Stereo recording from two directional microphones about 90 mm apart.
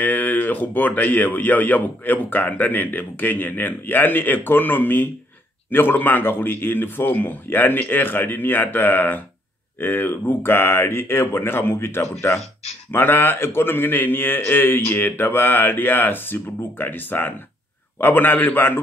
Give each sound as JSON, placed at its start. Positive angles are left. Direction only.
{"t": 0.0, "sound": "speech", "side_deg": 20}